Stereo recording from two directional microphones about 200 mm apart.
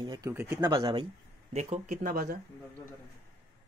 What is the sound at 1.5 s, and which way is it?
Speech, 35° right (ahead or behind).